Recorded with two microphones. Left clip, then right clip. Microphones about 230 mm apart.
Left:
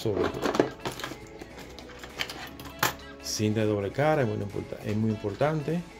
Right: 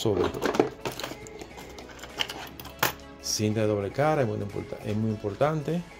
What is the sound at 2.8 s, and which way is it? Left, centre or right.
Speech, centre.